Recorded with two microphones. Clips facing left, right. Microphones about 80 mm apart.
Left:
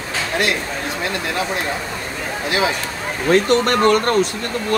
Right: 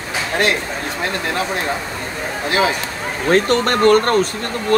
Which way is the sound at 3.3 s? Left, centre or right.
Right.